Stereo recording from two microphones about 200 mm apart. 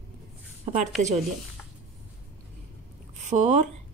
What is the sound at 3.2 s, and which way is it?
Speech, 35° right (ahead or behind).